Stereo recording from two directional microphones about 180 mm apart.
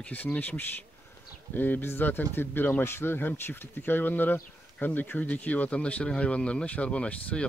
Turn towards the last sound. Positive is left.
turn(degrees=5)  # may be behind; listen again after turning